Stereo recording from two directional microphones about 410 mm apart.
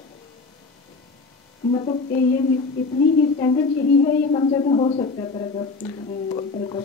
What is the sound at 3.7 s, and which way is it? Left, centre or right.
Speech, left.